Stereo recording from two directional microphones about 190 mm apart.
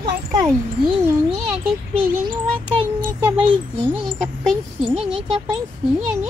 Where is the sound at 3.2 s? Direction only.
25° right (ahead or behind).